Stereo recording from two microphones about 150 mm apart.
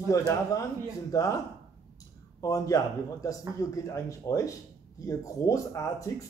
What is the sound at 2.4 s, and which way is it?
Speech, 25° left (ahead or behind).